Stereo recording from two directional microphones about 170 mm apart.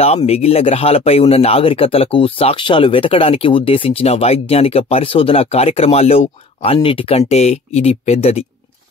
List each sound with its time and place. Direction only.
0.0 s speech: 35° left (ahead or behind)